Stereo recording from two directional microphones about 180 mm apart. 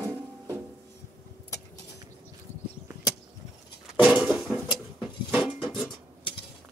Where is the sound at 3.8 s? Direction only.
5° right (ahead or behind).